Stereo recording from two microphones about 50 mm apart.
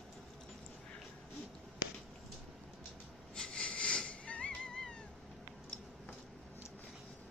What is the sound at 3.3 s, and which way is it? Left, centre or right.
Cat, centre.